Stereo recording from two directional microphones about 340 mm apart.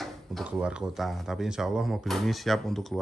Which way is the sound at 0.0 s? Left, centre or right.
Centre.